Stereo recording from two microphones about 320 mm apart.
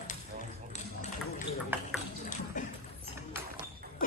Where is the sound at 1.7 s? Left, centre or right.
Centre.